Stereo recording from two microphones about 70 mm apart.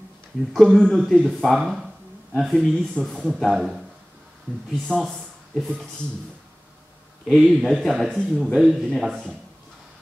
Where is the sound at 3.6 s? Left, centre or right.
Centre.